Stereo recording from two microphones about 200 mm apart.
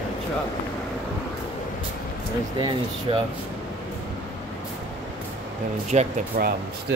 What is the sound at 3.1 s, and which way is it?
Speech, 25° right (ahead or behind).